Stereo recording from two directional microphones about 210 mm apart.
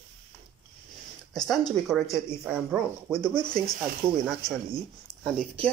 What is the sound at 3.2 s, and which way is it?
Speech, 20° left (ahead or behind).